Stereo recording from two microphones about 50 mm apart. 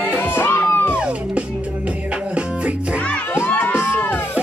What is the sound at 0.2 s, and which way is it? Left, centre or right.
Music, left.